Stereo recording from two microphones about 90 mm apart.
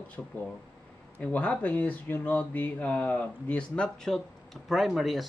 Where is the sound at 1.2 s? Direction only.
15° left (ahead or behind).